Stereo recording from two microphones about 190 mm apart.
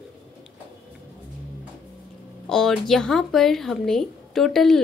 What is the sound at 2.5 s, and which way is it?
Speech, centre (ahead or behind).